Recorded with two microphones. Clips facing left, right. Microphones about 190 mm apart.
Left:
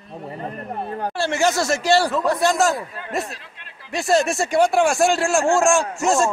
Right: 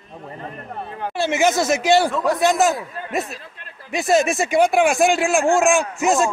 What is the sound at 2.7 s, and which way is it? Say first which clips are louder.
Speech: right 1 dB; centre (ahead or behind).